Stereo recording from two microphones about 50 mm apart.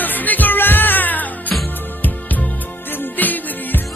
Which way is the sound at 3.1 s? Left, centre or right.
Left.